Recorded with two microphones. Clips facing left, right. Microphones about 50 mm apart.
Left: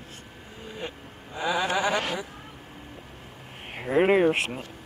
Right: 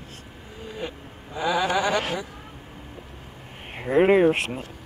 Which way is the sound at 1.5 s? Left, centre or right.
Centre.